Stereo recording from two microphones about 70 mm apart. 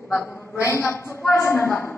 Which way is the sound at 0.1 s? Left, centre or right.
Left.